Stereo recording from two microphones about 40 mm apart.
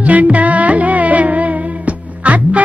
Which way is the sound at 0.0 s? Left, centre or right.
Right.